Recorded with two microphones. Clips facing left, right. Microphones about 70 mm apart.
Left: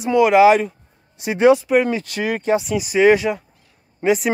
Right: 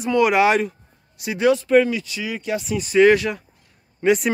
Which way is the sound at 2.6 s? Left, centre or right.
Centre.